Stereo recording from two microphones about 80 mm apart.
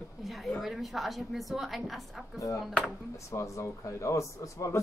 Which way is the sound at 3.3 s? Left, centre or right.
Left.